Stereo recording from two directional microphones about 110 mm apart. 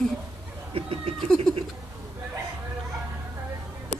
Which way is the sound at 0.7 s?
60° right (ahead or behind).